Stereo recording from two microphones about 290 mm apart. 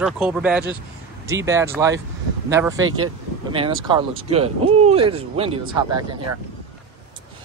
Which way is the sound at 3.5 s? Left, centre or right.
Centre.